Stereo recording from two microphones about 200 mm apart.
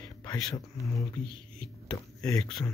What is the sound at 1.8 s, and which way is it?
Speech, 20° left (ahead or behind).